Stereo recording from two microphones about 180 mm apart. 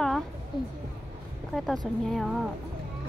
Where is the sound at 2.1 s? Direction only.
Centre (ahead or behind).